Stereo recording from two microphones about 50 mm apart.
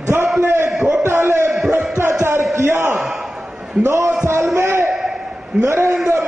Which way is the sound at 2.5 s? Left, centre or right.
Right.